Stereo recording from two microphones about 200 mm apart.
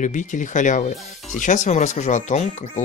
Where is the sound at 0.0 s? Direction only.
40° left (ahead or behind).